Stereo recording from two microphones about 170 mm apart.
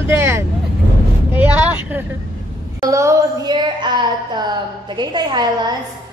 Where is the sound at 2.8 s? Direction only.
20° right (ahead or behind).